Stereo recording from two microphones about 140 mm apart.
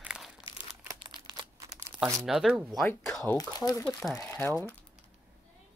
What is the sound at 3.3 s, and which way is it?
Speech, 25° left (ahead or behind).